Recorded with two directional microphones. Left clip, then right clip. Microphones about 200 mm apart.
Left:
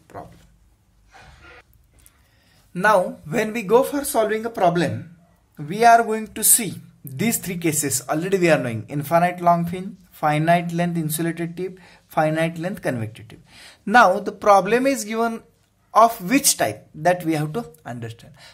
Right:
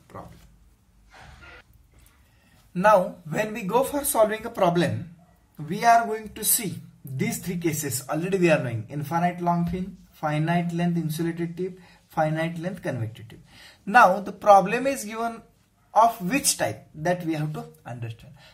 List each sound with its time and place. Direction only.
2.7 s speech: 30° left (ahead or behind)